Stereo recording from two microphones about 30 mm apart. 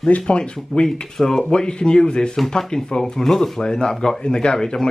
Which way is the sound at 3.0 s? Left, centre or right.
Centre.